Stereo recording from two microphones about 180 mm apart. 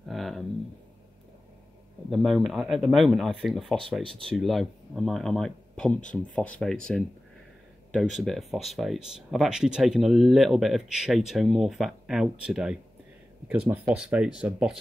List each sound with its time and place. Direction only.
0.1 s a sound: centre (ahead or behind)
2.0 s speech: centre (ahead or behind)
4.0 s speech: 30° right (ahead or behind)
4.3 s speech: centre (ahead or behind)